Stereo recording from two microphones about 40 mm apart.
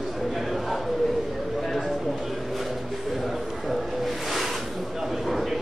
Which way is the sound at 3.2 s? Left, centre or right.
Centre.